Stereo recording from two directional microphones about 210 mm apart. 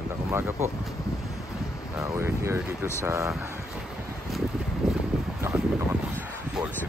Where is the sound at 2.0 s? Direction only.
10° right (ahead or behind).